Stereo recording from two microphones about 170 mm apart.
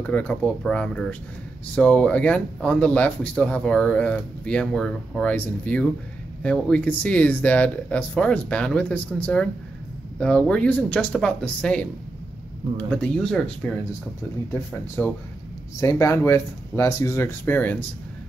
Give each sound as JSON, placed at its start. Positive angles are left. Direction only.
{"t": 0.0, "sound": "speech", "side_deg": 10}
{"t": 15.0, "sound": "speech", "side_deg": 15}